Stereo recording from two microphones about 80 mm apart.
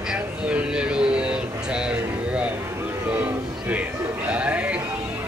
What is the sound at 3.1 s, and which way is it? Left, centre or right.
Music, centre.